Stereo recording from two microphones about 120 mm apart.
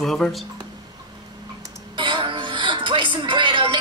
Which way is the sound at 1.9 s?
40° right (ahead or behind).